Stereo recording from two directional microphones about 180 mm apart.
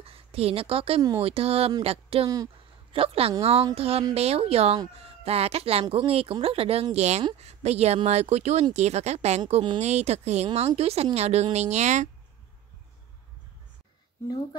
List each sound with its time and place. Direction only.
0.0 s a woman's voice: 35° right (ahead or behind)